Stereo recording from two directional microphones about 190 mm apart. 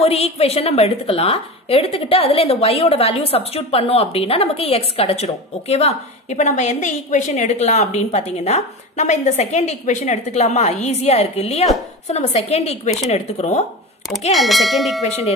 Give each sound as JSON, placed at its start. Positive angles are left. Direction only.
{"t": 0.0, "sound": "a woman's voice", "side_deg": 30}
{"t": 14.3, "sound": "speech", "side_deg": 0}
{"t": 15.0, "sound": "a woman's voice", "side_deg": 35}